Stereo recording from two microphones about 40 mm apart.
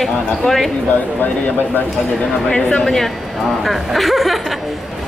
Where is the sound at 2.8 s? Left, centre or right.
Centre.